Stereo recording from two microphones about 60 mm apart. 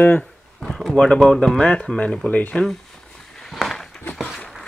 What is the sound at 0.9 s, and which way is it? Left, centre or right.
Speech, centre.